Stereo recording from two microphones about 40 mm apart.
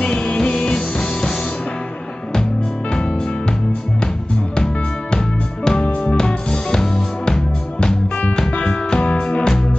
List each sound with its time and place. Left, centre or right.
0.0 s music: left
5.1 s music: left